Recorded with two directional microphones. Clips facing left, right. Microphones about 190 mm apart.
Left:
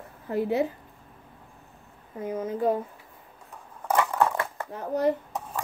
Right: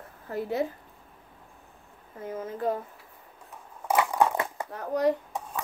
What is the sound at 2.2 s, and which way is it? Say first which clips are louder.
Speech: left 4 dB; 15° left (ahead or behind).